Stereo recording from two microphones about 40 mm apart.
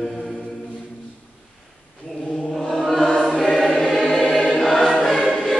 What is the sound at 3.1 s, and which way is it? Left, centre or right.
Choir, centre.